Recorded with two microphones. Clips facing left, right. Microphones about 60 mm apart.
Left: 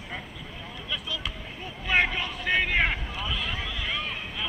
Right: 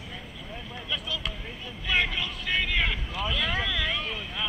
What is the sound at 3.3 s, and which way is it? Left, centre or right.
Speech, right.